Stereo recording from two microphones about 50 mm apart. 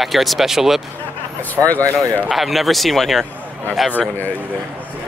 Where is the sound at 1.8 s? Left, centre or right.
Right.